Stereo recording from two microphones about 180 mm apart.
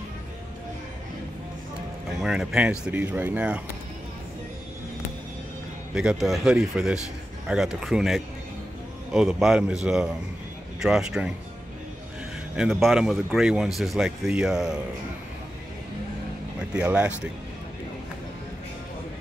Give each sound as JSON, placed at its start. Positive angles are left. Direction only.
{"t": 2.1, "sound": "speech", "side_deg": 0}
{"t": 5.9, "sound": "speech", "side_deg": 0}
{"t": 10.8, "sound": "speech", "side_deg": -5}
{"t": 12.5, "sound": "speech", "side_deg": 0}
{"t": 16.5, "sound": "speech", "side_deg": -5}